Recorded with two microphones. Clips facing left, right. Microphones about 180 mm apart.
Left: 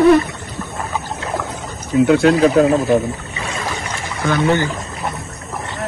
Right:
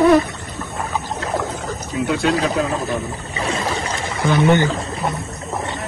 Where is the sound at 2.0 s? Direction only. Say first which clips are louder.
Left 7 dB; 55° left (ahead or behind).